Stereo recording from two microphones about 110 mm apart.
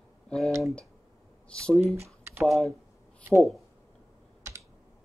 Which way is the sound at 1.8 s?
25° right (ahead or behind).